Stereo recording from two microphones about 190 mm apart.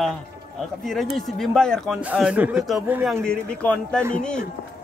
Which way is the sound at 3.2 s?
5° left (ahead or behind).